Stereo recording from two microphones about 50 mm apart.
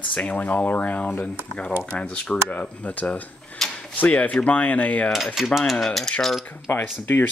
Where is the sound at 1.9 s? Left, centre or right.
Left.